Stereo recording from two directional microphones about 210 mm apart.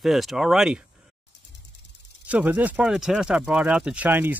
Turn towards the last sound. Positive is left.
turn(degrees=-10)  # may be behind; listen again after turning